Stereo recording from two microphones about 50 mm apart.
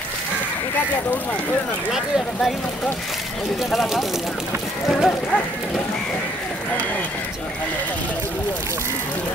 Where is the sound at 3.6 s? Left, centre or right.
Centre.